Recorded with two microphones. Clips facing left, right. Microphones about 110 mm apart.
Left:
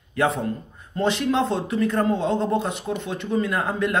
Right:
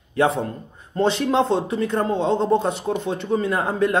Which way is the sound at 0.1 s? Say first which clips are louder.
Right 2 dB; 30° right (ahead or behind).